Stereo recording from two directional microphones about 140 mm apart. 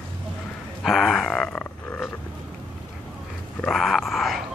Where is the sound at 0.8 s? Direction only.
Centre (ahead or behind).